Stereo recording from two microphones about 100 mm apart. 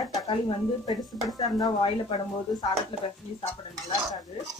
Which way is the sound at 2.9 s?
65° left (ahead or behind).